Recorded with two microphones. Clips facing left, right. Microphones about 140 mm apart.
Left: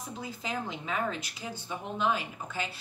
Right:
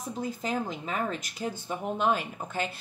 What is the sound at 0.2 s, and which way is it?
Speech, 45° right (ahead or behind).